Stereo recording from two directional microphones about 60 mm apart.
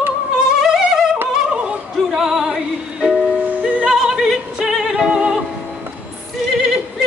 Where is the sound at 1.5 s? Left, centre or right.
Centre.